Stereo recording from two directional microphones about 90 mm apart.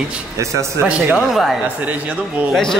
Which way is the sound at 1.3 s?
Centre (ahead or behind).